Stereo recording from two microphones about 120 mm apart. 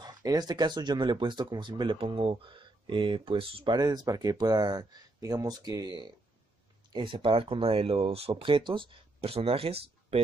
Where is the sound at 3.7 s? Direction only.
35° right (ahead or behind).